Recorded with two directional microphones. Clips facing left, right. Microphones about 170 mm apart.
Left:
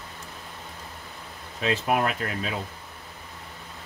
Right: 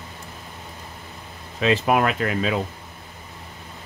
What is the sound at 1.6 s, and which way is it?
Speech, 90° right.